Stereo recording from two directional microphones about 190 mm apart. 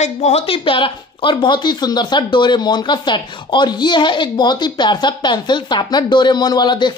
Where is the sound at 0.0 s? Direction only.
35° left (ahead or behind).